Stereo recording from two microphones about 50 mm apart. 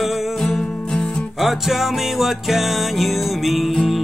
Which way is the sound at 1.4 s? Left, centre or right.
Centre.